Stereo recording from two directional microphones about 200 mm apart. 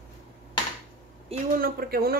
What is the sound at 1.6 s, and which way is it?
Speech, 50° right (ahead or behind).